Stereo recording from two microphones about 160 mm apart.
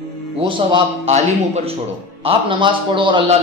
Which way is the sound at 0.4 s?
30° right (ahead or behind).